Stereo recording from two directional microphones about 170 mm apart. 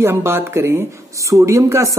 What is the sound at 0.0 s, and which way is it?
A woman's voice, 15° right (ahead or behind).